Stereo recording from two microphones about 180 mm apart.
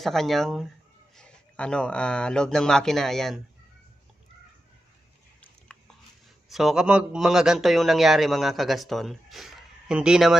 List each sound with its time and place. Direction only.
0.0 s a man's voice: centre (ahead or behind)
6.5 s a man's voice: centre (ahead or behind)